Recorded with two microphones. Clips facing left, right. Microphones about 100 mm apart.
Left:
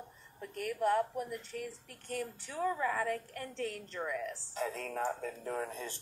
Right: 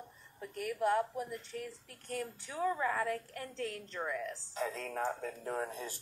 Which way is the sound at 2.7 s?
15° right (ahead or behind).